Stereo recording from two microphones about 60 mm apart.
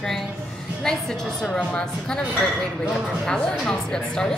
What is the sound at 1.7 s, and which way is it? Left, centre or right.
Speech, centre.